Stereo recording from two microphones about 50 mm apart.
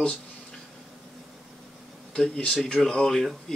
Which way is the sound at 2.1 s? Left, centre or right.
Centre.